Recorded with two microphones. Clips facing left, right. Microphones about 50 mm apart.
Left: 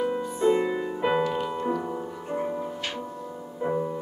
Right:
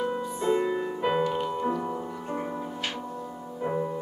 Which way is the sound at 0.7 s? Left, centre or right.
Centre.